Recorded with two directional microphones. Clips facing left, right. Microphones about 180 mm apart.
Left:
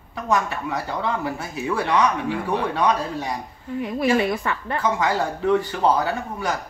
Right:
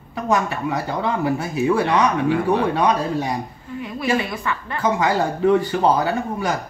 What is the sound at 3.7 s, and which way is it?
A woman's voice, 45° left (ahead or behind).